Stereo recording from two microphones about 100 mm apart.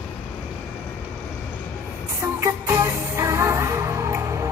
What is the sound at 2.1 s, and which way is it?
Music, 25° right (ahead or behind).